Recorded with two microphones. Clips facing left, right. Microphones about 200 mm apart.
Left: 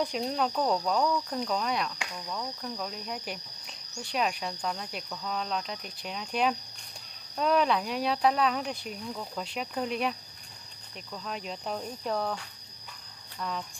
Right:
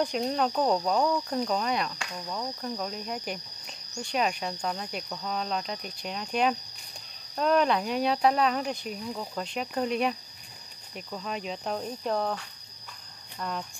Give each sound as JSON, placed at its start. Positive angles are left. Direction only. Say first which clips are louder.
{"t": 0.1, "sound": "speech", "louder": "right 3 dB", "side_deg": 0}
{"t": 0.5, "sound": "speech", "louder": "right 2 dB", "side_deg": -10}
{"t": 2.1, "sound": "cricket", "louder": "right 3 dB", "side_deg": -15}
{"t": 2.8, "sound": "speech", "louder": "right 3 dB", "side_deg": 0}
{"t": 9.4, "sound": "speech", "louder": "right 3 dB", "side_deg": 0}
{"t": 13.4, "sound": "speech", "louder": "right 1 dB", "side_deg": -5}